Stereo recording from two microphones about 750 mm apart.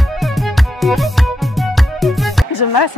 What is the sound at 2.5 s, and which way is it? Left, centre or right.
Speech, left.